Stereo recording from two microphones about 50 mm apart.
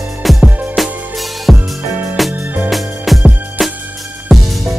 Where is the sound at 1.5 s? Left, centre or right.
Right.